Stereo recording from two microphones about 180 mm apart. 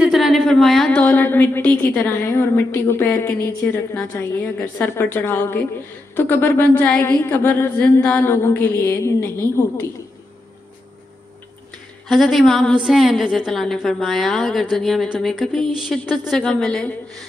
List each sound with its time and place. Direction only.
0.0 s a woman's voice: centre (ahead or behind)
12.1 s a woman's voice: centre (ahead or behind)